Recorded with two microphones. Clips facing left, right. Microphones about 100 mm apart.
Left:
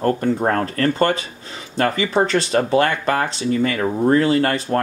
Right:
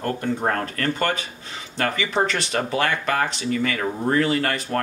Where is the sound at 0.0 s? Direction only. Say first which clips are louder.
Left 5 dB; 40° left (ahead or behind).